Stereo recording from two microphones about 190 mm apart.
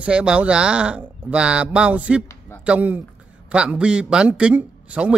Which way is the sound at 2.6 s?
5° right (ahead or behind).